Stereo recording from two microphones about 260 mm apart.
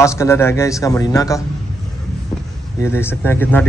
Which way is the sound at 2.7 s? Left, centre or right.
Centre.